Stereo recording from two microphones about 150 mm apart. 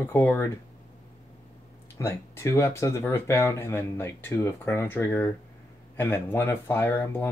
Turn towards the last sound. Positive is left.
turn(degrees=15)  # may be behind; listen again after turning